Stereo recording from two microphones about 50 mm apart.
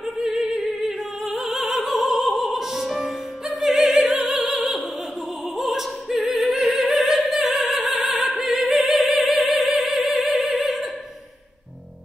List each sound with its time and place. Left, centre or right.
0.0 s music: centre
0.7 s opera: centre